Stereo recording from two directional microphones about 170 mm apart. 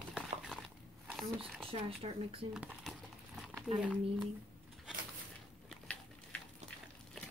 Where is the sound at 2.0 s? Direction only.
35° right (ahead or behind).